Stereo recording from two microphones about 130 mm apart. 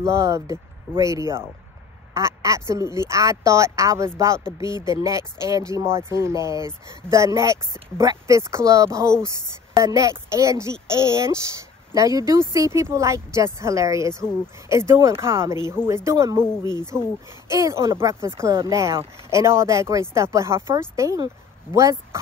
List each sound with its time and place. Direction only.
0.0 s speech: 25° right (ahead or behind)